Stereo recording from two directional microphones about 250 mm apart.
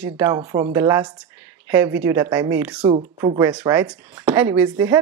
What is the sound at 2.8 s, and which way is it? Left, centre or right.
A woman's voice, centre.